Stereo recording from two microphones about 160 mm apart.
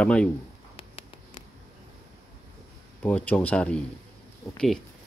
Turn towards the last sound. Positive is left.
turn(degrees=0)  # may be behind; listen again after turning